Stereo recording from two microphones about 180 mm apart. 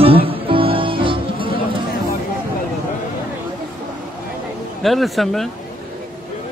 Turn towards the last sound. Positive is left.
turn(degrees=0)  # may be behind; listen again after turning